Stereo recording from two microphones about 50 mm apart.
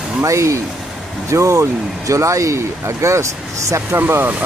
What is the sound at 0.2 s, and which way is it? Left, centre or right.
Speech, right.